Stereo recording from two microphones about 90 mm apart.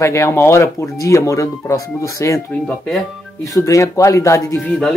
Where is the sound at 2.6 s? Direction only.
5° left (ahead or behind).